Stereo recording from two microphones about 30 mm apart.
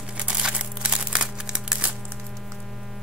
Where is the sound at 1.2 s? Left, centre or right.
Right.